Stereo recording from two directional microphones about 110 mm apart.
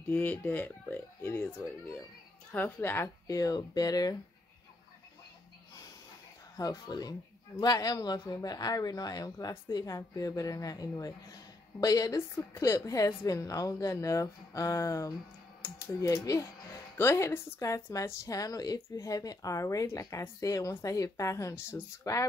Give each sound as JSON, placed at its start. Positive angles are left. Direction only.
{"t": 0.1, "sound": "a woman's voice", "side_deg": 15}
{"t": 3.3, "sound": "a woman's voice", "side_deg": 30}
{"t": 6.5, "sound": "a woman's voice", "side_deg": 35}